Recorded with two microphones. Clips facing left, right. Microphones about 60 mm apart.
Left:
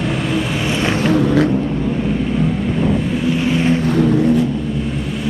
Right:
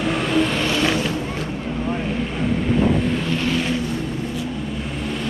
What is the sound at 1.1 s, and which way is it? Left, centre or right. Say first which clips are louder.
Vehicle: left 12 dB; left.